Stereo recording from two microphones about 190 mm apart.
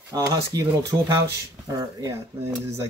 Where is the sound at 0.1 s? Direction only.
20° right (ahead or behind).